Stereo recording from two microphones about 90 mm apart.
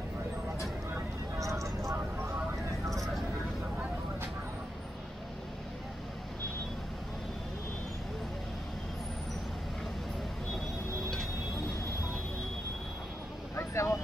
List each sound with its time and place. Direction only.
0.9 s vehicle: 35° right (ahead or behind)
2.9 s vehicle: centre (ahead or behind)
13.6 s vehicle: 30° left (ahead or behind)